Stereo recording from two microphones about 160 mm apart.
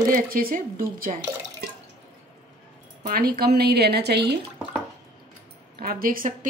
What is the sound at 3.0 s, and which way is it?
A woman's voice, 70° right (ahead or behind).